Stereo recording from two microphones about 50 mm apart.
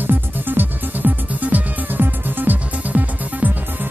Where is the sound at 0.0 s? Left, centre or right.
Right.